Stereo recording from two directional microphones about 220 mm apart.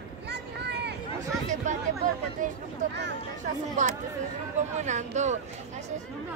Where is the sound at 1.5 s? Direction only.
35° right (ahead or behind).